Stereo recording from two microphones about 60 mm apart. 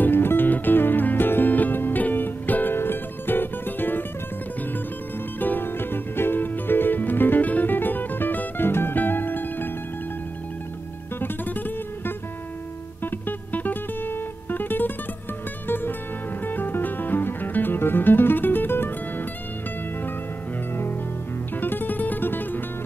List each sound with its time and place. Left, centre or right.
0.0 s music: left
5.4 s music: left
11.1 s music: left
13.0 s music: left
16.4 s music: left
21.5 s music: left